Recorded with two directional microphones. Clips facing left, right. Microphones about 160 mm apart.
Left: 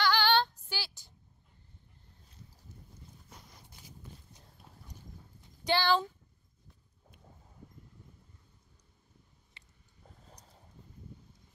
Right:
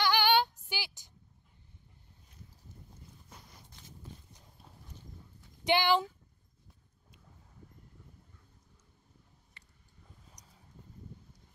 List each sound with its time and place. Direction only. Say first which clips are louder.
0.0 s female singing: even; 15° right (ahead or behind)
5.6 s speech: right 1 dB; 15° right (ahead or behind)